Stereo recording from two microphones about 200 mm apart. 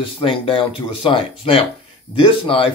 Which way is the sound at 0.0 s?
25° left (ahead or behind).